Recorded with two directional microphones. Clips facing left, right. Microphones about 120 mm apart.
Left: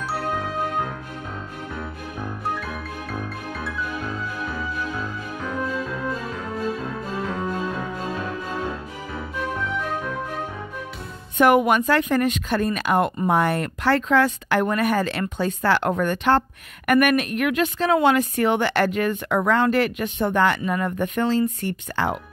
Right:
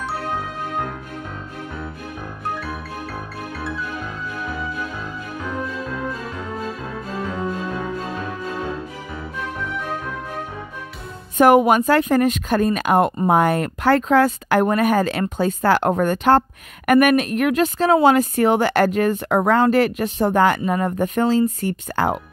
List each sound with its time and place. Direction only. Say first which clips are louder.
11.3 s speech: right 4 dB; 40° right (ahead or behind)